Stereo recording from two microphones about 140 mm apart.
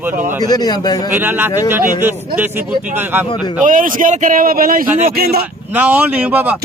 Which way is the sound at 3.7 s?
75° right (ahead or behind).